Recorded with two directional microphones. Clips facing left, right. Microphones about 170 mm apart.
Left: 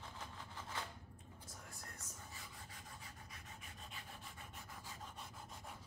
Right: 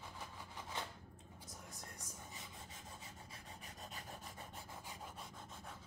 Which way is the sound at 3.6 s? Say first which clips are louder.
Right 5 dB; 40° right (ahead or behind).